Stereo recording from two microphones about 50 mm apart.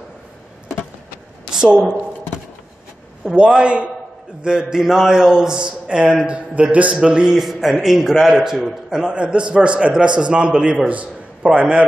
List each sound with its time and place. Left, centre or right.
1.5 s a woman's voice: centre
3.3 s a man's voice: right
7.3 s a man's voice: centre; by 11.6 s right